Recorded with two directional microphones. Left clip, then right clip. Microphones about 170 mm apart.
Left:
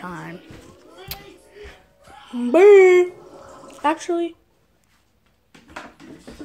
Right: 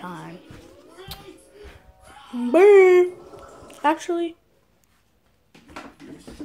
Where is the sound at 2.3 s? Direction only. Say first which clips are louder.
Left 2 dB; centre (ahead or behind).